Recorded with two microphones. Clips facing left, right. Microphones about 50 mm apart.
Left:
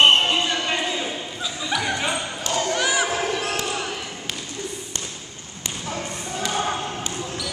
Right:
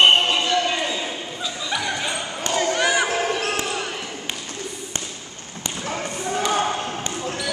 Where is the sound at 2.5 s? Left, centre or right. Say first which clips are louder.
Right 2 dB; centre.